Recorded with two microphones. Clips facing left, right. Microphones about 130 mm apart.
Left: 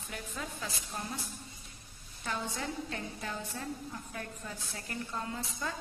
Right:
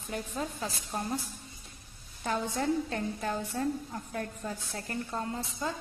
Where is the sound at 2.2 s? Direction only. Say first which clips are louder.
Right 7 dB; 45° right (ahead or behind); by 5.8 s 25° right (ahead or behind).